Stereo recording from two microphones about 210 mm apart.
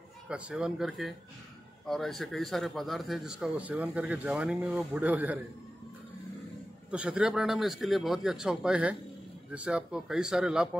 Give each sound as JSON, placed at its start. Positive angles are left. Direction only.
{"t": 0.3, "sound": "speech", "side_deg": -5}
{"t": 6.9, "sound": "speech", "side_deg": -5}